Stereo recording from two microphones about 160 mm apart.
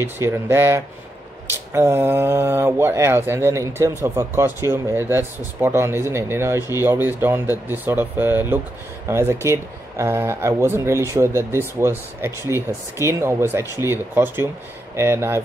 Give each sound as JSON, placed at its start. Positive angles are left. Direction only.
{"t": 0.0, "sound": "speech", "side_deg": -15}